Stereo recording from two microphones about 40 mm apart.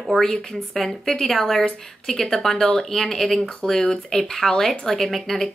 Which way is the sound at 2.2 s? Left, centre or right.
Centre.